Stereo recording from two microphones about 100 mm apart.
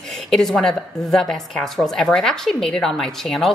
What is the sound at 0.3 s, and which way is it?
A woman's voice, 5° left (ahead or behind).